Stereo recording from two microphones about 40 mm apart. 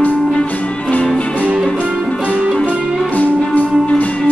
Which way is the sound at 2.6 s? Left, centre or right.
Left.